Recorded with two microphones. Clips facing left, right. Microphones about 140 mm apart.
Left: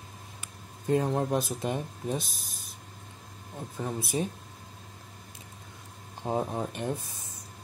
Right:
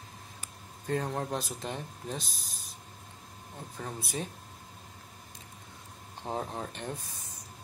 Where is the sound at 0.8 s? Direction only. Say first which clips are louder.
Left 6 dB; 15° left (ahead or behind).